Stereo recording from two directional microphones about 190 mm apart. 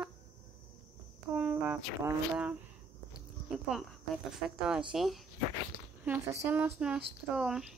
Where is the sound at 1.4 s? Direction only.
10° right (ahead or behind).